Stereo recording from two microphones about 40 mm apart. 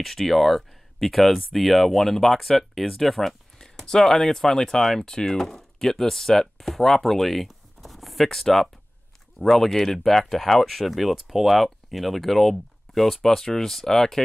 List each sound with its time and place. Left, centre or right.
0.0 s speech: centre
7.4 s a sound: centre
9.4 s speech: centre